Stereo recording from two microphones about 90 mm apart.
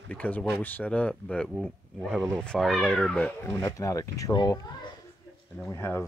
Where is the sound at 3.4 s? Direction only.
30° left (ahead or behind).